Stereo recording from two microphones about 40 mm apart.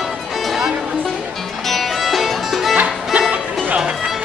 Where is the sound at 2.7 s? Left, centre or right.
Right.